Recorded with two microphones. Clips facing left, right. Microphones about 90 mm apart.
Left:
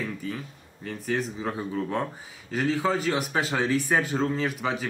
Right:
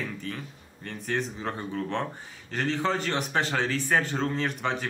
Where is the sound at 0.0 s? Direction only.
5° left (ahead or behind).